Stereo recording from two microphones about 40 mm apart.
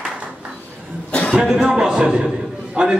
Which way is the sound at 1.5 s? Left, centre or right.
Centre.